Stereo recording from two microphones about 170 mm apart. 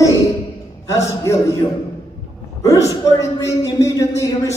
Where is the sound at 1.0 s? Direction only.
20° left (ahead or behind).